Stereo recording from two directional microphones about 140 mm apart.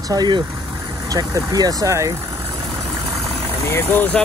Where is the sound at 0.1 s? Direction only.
30° right (ahead or behind).